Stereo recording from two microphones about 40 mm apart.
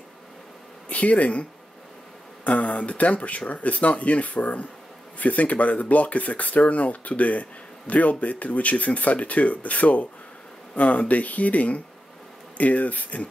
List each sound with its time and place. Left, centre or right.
0.8 s speech: left
2.4 s speech: left